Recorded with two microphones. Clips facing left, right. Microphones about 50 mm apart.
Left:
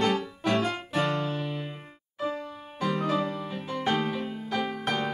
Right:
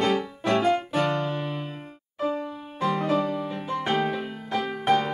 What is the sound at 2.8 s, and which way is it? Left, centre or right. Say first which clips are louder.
Music: right 3 dB; centre.